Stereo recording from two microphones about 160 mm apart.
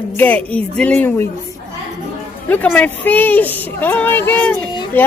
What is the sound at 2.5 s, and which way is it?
Speech, 10° left (ahead or behind).